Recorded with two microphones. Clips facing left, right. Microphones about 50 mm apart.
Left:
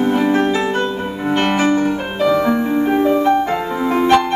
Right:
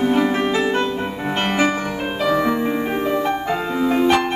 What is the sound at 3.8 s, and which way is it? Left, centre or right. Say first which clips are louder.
Music: even; left.